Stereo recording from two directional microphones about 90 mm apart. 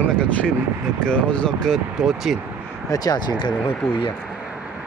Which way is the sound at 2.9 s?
45° left (ahead or behind).